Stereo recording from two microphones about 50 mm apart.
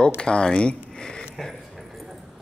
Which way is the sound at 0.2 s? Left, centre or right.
Centre.